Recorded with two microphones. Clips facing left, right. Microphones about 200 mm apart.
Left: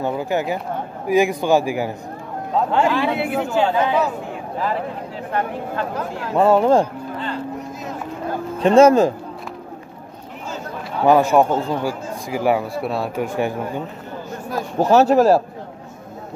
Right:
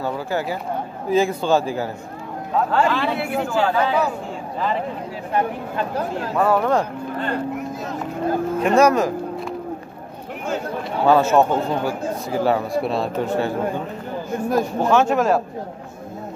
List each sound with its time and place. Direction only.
0.0 s a man's voice: 20° left (ahead or behind)
6.3 s a man's voice: 25° left (ahead or behind)
7.2 s speech: 55° right (ahead or behind)
8.5 s a man's voice: 30° left (ahead or behind)
11.1 s speech: 15° left (ahead or behind)
14.8 s speech: 40° left (ahead or behind)